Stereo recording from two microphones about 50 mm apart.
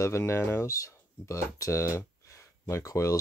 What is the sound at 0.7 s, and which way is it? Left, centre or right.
Speech, left.